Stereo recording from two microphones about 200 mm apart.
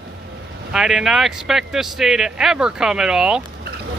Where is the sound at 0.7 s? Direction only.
Centre (ahead or behind).